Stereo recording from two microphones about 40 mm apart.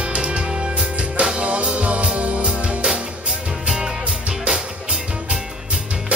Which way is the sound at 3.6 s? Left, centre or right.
Centre.